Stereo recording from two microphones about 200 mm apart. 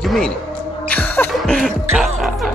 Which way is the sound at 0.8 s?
10° left (ahead or behind).